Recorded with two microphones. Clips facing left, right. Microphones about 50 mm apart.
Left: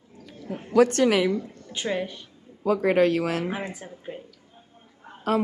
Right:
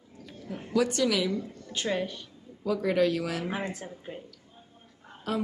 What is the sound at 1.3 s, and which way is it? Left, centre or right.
Speech, centre.